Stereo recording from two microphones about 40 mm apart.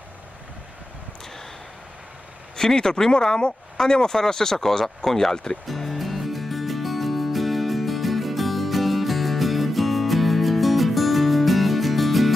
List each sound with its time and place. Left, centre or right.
2.5 s speech: centre
5.7 s music: centre